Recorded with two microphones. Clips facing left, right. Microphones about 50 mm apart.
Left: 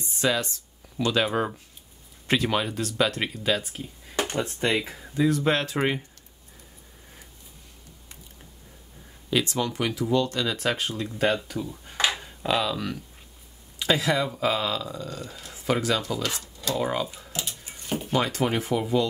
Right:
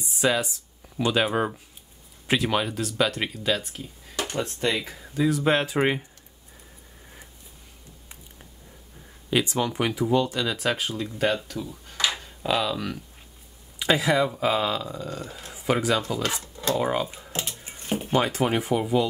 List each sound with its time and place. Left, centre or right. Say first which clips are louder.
0.0 s speech: right 2 dB; centre
9.3 s speech: right 1 dB; centre
10.4 s speech: even; centre
12.1 s a sound: left 1 dB; centre
12.4 s speech: even; centre
13.7 s speech: right 2 dB; centre
15.2 s speech: right 2 dB; right
15.5 s speech: right 1 dB; centre
16.5 s dishes: right 4 dB; right
16.8 s speech: even; centre
17.3 s a sound: right 2 dB; right
18.2 s speech: right 1 dB; centre